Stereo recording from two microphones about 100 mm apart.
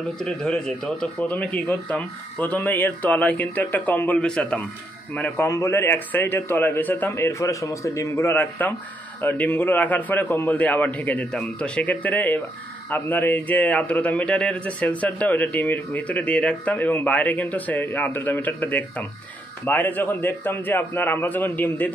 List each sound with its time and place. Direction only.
0.2 s a man's voice: 5° left (ahead or behind)
5.4 s a man's voice: 30° left (ahead or behind)